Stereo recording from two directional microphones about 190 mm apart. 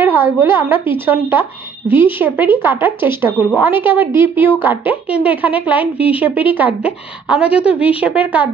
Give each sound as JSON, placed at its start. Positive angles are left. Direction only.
{"t": 0.0, "sound": "a woman's voice", "side_deg": -10}
{"t": 7.6, "sound": "a woman's voice", "side_deg": 30}
{"t": 8.0, "sound": "a woman's voice", "side_deg": -5}